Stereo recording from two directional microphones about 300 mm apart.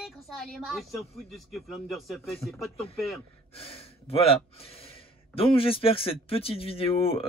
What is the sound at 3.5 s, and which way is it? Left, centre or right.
Speech, centre.